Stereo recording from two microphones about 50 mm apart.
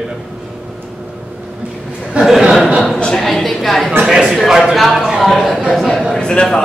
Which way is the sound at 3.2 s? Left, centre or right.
Centre.